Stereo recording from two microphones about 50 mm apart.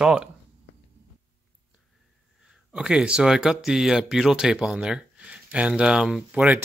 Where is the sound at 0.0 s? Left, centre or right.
Centre.